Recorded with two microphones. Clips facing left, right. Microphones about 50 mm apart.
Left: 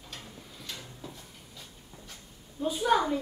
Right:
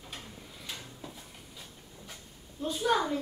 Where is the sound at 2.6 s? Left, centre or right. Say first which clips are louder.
Left 3 dB; centre.